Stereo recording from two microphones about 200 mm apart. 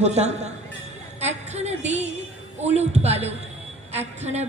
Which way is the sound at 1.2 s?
35° right (ahead or behind).